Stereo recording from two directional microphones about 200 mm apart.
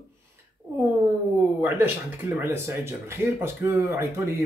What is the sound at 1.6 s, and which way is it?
Speech, 10° right (ahead or behind).